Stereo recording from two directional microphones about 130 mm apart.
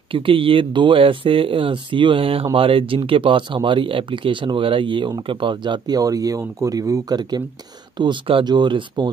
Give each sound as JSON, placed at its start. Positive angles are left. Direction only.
{"t": 0.1, "sound": "speech", "side_deg": -45}